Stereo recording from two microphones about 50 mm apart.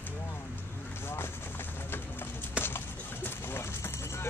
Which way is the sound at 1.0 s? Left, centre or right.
Left.